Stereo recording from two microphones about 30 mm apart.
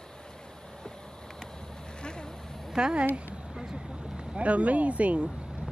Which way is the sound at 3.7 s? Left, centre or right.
Right.